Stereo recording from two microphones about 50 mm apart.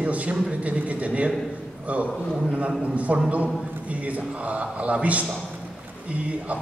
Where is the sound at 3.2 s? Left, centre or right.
Right.